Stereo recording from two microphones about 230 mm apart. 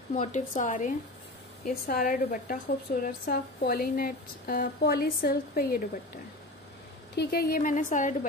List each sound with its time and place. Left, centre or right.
0.1 s speech: left
7.2 s speech: left